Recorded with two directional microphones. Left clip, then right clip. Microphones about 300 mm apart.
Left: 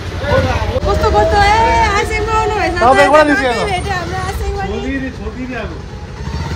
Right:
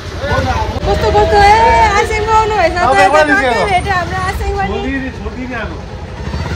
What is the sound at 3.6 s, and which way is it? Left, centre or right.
Speech, centre.